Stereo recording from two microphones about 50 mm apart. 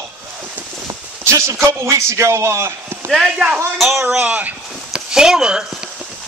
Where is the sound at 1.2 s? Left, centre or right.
Right.